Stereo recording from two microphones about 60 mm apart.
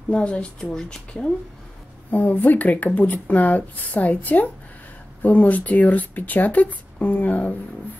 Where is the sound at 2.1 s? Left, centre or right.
Left.